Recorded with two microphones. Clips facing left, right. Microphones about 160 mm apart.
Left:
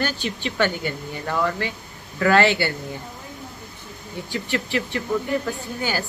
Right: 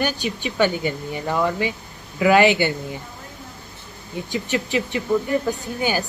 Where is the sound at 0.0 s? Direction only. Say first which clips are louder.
Right 2 dB; 15° right (ahead or behind).